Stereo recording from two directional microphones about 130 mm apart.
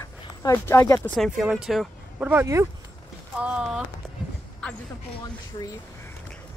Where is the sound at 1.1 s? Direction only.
Centre (ahead or behind).